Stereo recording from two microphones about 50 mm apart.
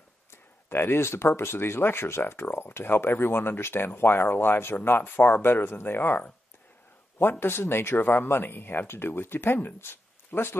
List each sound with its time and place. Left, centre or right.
0.3 s speech: left
7.2 s speech: left